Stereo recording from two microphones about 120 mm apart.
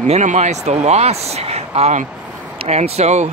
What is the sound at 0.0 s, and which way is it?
Speech, 85° right.